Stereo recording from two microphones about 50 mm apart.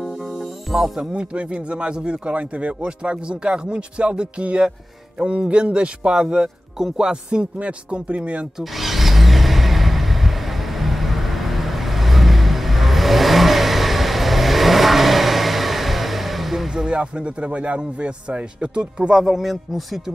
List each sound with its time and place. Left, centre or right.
0.7 s a man's voice: centre
6.8 s music: centre
7.5 s a man's voice: right
8.5 s vehicle: centre; by 19.1 s right
19.1 s speech: centre